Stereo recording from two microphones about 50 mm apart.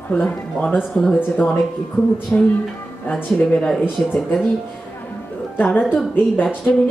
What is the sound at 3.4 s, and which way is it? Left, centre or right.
Speech, left.